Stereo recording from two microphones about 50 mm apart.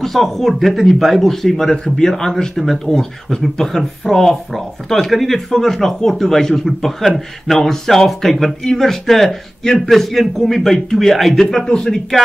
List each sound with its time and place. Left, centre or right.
0.0 s speech: centre